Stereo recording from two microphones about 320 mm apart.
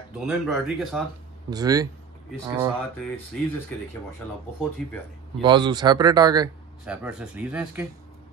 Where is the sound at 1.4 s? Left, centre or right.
Centre.